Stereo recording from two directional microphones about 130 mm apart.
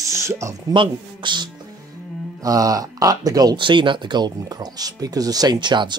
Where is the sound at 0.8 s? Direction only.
35° right (ahead or behind).